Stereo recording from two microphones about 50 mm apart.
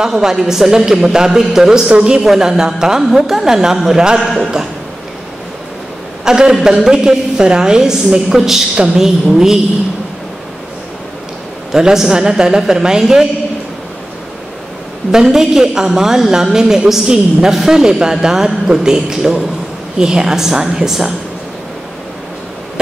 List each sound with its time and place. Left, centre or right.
0.0 s a woman's voice: centre
2.2 s a woman's voice: centre
4.4 s a sound: centre
6.2 s a woman's voice: centre
11.7 s a woman's voice: centre
15.0 s a woman's voice: centre